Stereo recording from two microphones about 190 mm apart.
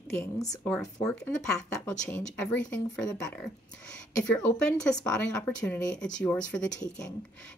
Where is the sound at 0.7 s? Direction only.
5° left (ahead or behind).